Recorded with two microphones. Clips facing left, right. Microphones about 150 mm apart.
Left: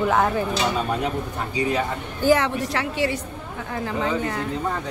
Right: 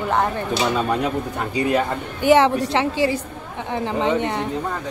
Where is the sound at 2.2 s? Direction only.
25° right (ahead or behind).